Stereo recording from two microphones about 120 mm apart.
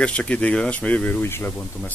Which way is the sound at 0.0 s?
10° left (ahead or behind).